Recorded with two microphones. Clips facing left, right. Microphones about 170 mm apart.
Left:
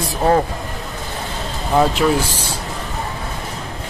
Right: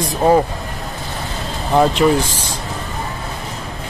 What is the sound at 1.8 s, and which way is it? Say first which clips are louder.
Speech: right 2 dB; 5° left (ahead or behind).